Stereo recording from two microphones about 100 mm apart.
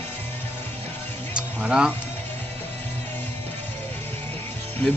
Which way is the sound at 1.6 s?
10° right (ahead or behind).